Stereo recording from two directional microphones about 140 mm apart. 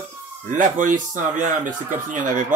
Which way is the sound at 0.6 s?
70° right (ahead or behind).